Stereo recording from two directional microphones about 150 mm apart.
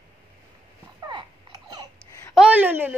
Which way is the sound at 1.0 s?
30° right (ahead or behind).